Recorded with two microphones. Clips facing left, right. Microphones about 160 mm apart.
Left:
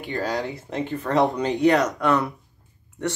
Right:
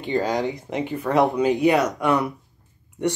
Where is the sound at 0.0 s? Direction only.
20° right (ahead or behind).